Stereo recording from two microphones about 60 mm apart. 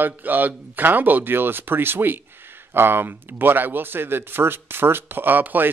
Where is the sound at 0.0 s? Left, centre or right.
Right.